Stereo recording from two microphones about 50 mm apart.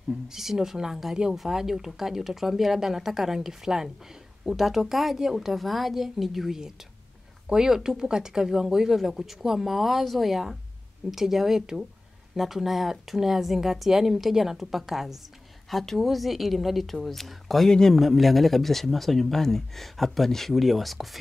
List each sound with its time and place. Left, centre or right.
0.3 s speech: centre
15.7 s speech: centre
17.9 s speech: centre